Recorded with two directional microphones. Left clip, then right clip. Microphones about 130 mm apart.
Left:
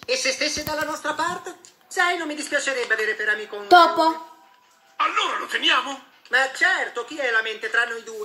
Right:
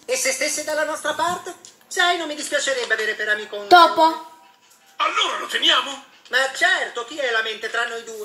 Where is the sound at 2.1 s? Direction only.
35° left (ahead or behind).